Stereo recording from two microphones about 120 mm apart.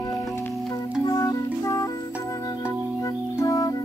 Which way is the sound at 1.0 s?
30° left (ahead or behind).